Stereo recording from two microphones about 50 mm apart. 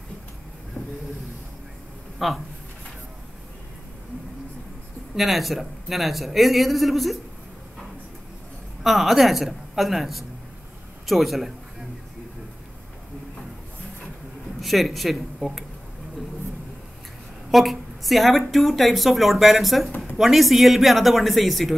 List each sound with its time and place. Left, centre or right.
0.8 s a sound: centre
2.1 s speech: centre
5.1 s a woman's voice: centre
8.8 s a woman's voice: centre
14.6 s a woman's voice: centre
17.5 s a woman's voice: centre